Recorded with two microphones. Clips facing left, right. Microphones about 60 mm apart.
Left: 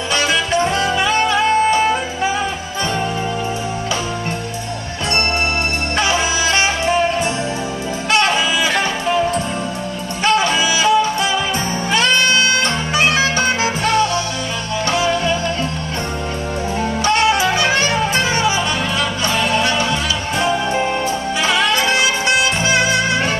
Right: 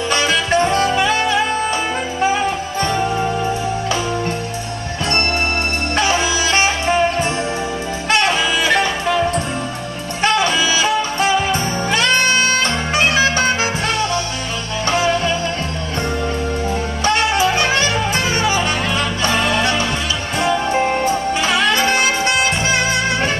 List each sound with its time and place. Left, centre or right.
0.5 s music: right
1.3 s music: left
2.2 s music: right
6.5 s music: right
10.3 s music: left
10.8 s music: right
17.6 s music: right
19.2 s music: right
20.7 s music: right